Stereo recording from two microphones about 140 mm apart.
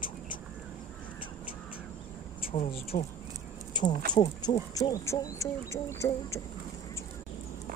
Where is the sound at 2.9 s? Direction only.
65° left (ahead or behind).